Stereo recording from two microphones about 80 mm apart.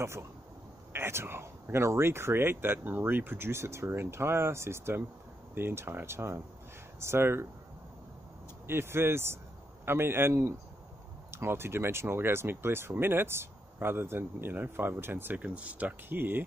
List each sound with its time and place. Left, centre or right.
0.0 s speech: right
8.6 s speech: right